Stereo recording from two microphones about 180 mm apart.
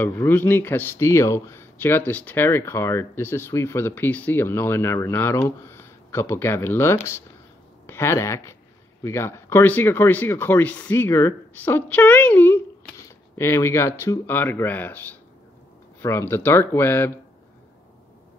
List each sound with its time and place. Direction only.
0.0 s a man's voice: 10° left (ahead or behind)
16.0 s a man's voice: 15° left (ahead or behind)